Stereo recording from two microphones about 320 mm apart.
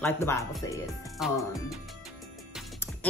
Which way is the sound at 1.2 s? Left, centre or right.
Centre.